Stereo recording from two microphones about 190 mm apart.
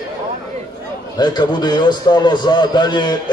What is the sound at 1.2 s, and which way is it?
Speech, 20° left (ahead or behind).